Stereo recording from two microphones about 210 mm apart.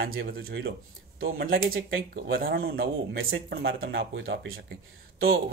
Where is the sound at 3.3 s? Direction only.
60° right (ahead or behind).